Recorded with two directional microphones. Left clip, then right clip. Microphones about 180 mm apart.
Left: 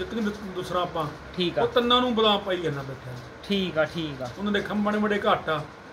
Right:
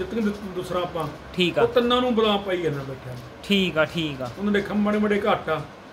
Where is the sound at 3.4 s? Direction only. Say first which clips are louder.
Right 4 dB; 10° right (ahead or behind).